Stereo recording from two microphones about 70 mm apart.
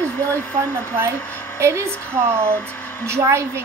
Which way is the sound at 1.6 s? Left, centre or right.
Right.